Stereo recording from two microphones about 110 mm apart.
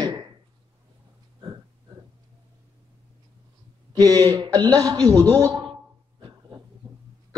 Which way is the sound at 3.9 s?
35° right (ahead or behind).